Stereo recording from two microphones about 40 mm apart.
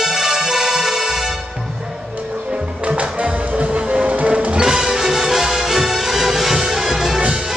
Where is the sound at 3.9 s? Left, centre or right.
Right.